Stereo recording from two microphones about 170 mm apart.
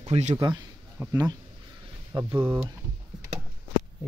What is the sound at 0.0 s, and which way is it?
Speech, 40° right (ahead or behind).